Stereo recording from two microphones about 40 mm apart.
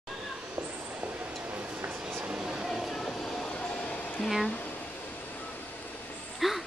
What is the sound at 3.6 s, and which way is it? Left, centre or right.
Music, left.